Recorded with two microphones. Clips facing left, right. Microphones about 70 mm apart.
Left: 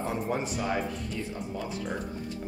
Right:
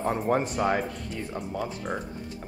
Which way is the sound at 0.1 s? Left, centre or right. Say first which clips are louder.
Right 7 dB; right.